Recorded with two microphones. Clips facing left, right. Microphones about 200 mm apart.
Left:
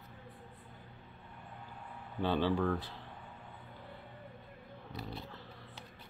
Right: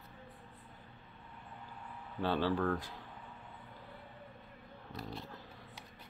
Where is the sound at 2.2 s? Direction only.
5° right (ahead or behind).